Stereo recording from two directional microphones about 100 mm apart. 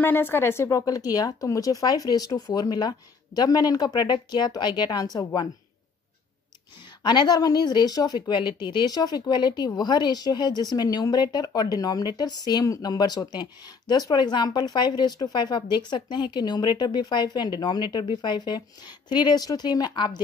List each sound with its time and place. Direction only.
0.0 s speech: 20° left (ahead or behind); by 5.5 s 45° left (ahead or behind)
7.0 s a woman's voice: 45° left (ahead or behind)